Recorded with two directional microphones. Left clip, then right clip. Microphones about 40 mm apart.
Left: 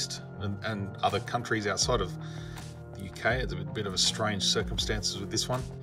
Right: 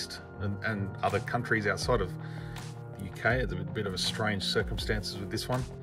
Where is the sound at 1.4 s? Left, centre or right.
Left.